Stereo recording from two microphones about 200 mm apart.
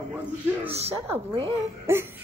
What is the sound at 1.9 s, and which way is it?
Speech, 10° right (ahead or behind).